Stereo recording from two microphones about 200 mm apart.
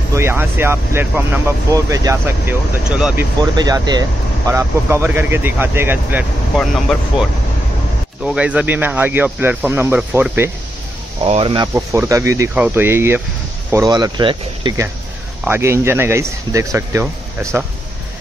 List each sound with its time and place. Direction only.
0.1 s speech: 10° right (ahead or behind)
3.5 s speech: 20° right (ahead or behind)
11.2 s speech: 30° right (ahead or behind)
11.7 s speech: 15° right (ahead or behind)